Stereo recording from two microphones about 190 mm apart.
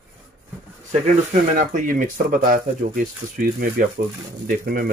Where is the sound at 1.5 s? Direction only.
45° right (ahead or behind).